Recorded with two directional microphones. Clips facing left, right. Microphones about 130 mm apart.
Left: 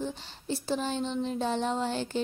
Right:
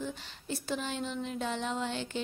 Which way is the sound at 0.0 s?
30° left (ahead or behind).